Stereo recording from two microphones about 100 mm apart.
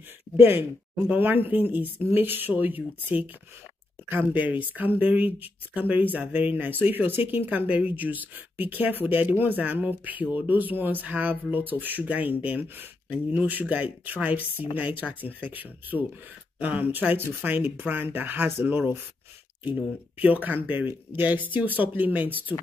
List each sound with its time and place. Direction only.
0.4 s speech: 20° right (ahead or behind)